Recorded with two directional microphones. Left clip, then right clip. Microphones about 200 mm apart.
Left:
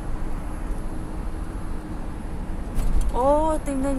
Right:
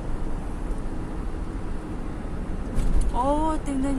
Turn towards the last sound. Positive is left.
turn(degrees=15)  # may be behind; listen again after turning